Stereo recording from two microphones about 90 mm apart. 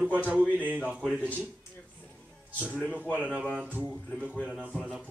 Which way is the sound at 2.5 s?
15° right (ahead or behind).